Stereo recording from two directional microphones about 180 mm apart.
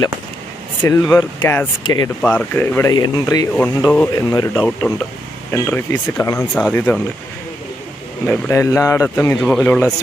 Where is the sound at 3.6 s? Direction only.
5° left (ahead or behind).